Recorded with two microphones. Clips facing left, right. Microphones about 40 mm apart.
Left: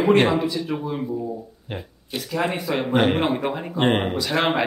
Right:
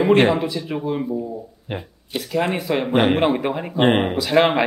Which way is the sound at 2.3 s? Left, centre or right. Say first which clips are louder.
Right 3 dB; centre.